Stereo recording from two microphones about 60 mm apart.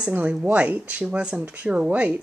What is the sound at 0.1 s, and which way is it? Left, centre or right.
Speech, right.